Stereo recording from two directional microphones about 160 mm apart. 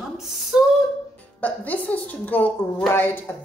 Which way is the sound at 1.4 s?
10° left (ahead or behind).